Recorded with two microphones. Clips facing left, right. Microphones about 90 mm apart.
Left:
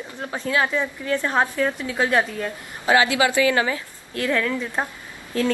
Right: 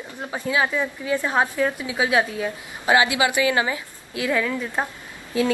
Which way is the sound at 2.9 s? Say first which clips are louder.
Left 1 dB; 20° right (ahead or behind).